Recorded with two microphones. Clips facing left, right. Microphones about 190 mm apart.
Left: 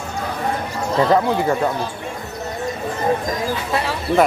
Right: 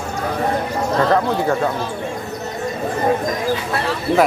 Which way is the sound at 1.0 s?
10° left (ahead or behind).